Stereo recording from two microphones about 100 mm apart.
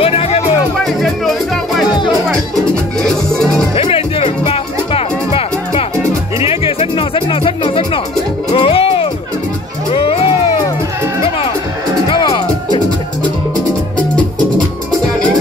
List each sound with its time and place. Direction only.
0.0 s music: 80° left
3.0 s music: 5° left (ahead or behind)
3.7 s music: 75° left (ahead or behind)
8.5 s music: 70° left (ahead or behind)
12.1 s music: 50° left (ahead or behind)